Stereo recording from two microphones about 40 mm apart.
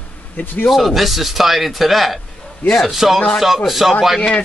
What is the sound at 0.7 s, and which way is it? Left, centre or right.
Speech, centre.